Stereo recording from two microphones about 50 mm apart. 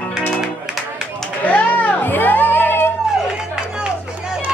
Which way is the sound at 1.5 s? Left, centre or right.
Left.